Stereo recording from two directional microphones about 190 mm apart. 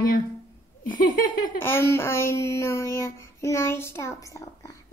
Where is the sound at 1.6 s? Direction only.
10° left (ahead or behind).